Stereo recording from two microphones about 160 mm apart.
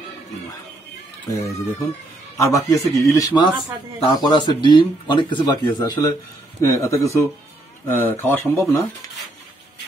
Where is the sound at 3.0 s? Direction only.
20° left (ahead or behind).